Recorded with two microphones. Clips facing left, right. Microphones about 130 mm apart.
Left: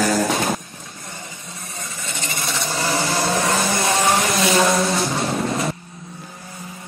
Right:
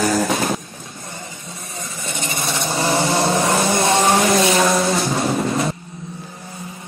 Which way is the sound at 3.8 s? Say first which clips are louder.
Right 4 dB; 25° right (ahead or behind).